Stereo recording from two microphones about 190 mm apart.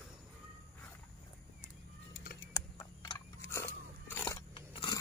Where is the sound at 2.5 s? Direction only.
15° left (ahead or behind).